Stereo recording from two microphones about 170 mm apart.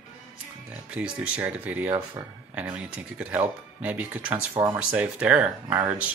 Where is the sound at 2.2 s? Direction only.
25° right (ahead or behind).